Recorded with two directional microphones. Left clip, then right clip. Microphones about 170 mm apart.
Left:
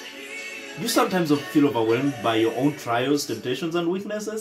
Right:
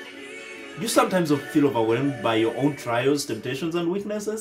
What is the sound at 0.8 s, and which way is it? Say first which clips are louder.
Speech: right 1 dB; 25° right (ahead or behind).